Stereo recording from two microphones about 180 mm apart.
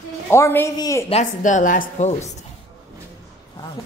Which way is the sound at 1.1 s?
40° left (ahead or behind).